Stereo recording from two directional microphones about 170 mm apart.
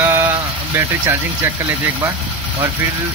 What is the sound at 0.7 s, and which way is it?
Speech, 15° right (ahead or behind).